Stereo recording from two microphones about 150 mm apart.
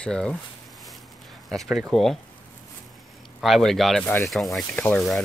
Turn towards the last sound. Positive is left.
turn(degrees=0)  # may be behind; listen again after turning